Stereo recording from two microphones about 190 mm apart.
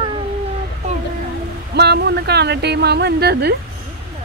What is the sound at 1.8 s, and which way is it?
A woman's voice, 60° right (ahead or behind).